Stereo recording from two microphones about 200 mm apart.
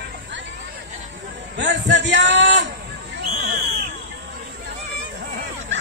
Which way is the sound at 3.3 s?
50° right (ahead or behind).